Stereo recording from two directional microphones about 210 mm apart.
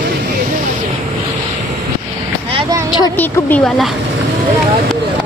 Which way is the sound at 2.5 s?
25° right (ahead or behind).